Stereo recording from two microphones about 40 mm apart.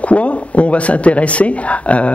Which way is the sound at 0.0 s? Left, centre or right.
Left.